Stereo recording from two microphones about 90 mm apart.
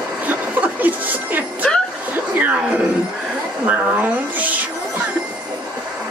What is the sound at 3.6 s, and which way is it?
Speech, 15° right (ahead or behind).